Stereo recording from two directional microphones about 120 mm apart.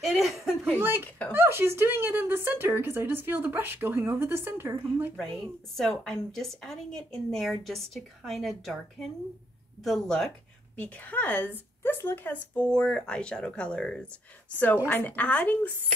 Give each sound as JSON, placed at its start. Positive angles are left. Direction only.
{"t": 0.0, "sound": "a woman's voice", "side_deg": 0}
{"t": 0.7, "sound": "speech", "side_deg": -20}
{"t": 5.1, "sound": "a woman's voice", "side_deg": 5}